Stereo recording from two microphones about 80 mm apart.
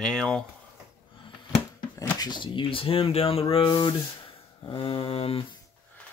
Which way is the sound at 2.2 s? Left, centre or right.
Left.